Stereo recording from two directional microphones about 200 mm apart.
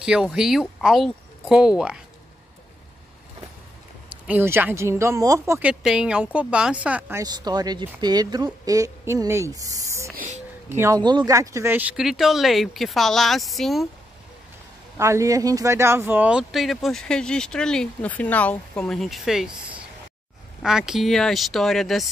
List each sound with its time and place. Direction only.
0.0 s speech: 5° right (ahead or behind)
4.1 s speech: 10° right (ahead or behind)
10.1 s a sound: 40° right (ahead or behind)
10.7 s speech: 15° right (ahead or behind)
15.0 s speech: 15° right (ahead or behind)